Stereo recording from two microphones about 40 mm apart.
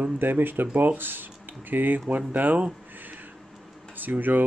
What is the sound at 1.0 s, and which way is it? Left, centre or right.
Speech, right.